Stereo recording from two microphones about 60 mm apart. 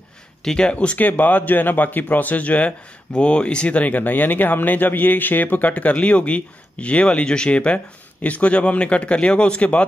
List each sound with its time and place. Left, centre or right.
0.4 s speech: centre